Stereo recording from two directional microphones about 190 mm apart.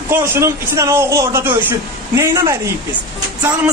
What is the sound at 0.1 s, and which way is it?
Speech, 10° right (ahead or behind).